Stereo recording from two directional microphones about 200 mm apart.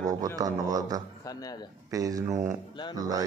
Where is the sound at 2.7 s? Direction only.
20° left (ahead or behind).